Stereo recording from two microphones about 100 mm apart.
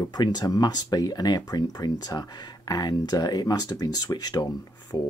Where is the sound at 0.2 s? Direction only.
45° left (ahead or behind).